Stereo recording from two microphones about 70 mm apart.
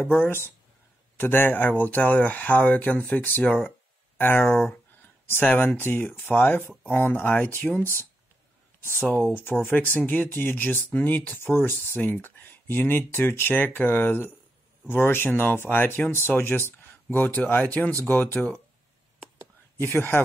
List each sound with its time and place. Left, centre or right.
0.0 s speech: left
4.5 s speech: centre
5.3 s speech: left
19.8 s speech: left